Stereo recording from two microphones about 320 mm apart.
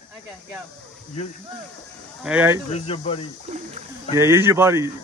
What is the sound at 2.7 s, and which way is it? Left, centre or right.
Speech, centre.